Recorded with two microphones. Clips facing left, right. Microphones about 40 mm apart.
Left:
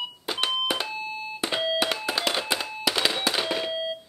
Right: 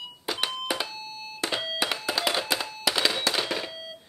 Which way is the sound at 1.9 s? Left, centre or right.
Centre.